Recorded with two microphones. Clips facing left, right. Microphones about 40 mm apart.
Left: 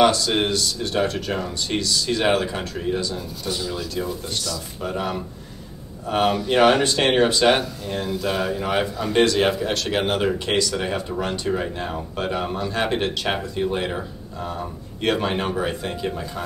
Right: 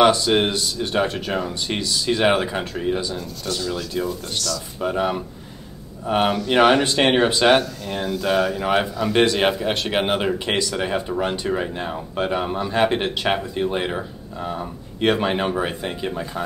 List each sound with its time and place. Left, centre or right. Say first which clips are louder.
0.1 s speech: right 3 dB; centre
3.2 s speech: right 1 dB; centre
4.7 s speech: right 5 dB; centre
6.3 s speech: right 1 dB; centre
6.6 s speech: right 1 dB; centre